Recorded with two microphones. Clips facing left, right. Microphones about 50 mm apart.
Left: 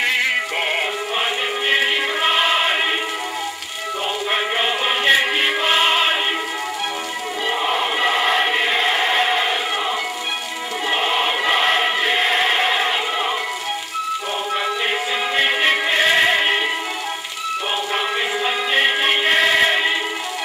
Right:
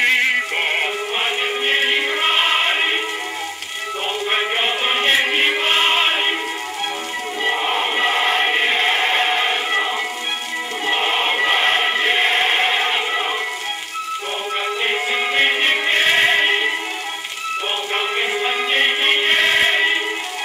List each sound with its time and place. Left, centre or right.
1.7 s music: right
4.6 s music: right
7.4 s choir: right
10.9 s choir: right
15.1 s music: right
17.9 s music: right